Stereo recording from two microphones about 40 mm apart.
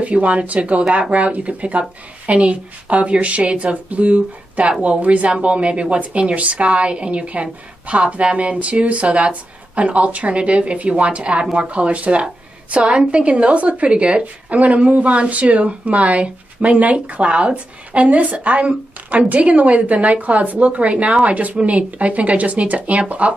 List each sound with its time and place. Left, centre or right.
0.0 s speech: right